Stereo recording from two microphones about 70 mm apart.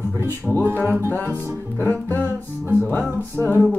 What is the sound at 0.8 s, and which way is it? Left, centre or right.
Music, left.